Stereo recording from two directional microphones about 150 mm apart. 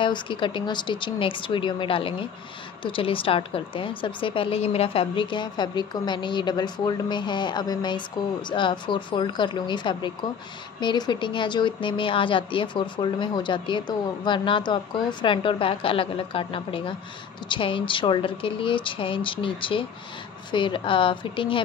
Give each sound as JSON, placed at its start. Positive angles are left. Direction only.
{"t": 0.0, "sound": "a woman's voice", "side_deg": 35}